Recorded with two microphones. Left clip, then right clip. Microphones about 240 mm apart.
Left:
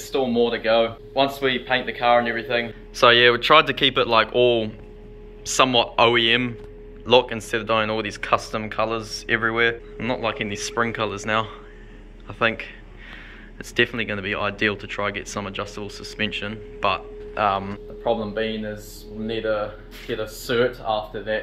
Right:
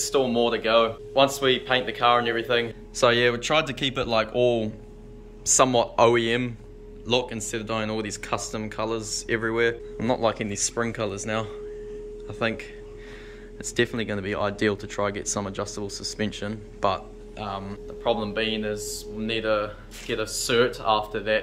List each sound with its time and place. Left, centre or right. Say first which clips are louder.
0.0 s speech: left 1 dB; centre
18.0 s speech: left 2 dB; centre